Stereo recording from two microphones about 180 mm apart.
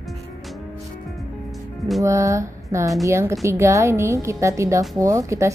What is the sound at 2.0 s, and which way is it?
A woman's voice, 15° right (ahead or behind).